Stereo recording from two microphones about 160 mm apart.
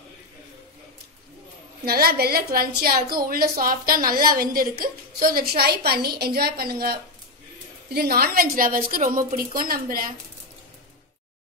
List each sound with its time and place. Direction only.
1.9 s a woman's voice: 70° right (ahead or behind)